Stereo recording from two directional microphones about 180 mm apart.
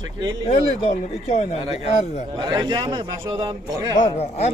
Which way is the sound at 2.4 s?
20° right (ahead or behind).